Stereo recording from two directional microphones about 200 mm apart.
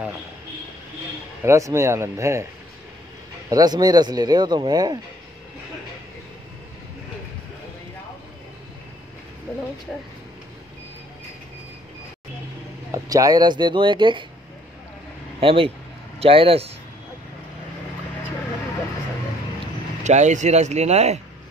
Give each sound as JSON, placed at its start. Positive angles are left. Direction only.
{"t": 1.4, "sound": "speech", "side_deg": -15}
{"t": 3.4, "sound": "speech", "side_deg": -20}
{"t": 12.9, "sound": "speech", "side_deg": -15}
{"t": 15.4, "sound": "speech", "side_deg": -25}
{"t": 20.0, "sound": "speech", "side_deg": -35}